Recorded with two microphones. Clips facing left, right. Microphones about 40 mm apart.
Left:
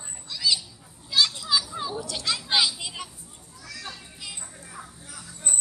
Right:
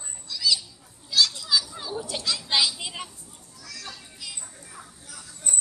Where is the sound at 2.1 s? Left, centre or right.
Centre.